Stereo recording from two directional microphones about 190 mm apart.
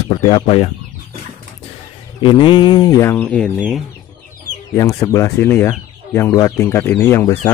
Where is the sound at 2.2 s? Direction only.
25° left (ahead or behind); by 3.5 s 5° left (ahead or behind).